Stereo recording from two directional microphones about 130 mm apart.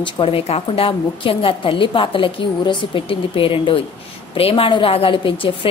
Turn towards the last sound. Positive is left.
turn(degrees=40)  # may be behind; listen again after turning